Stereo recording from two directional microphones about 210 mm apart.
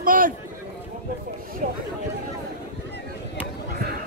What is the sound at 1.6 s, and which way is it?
Speech, 40° right (ahead or behind).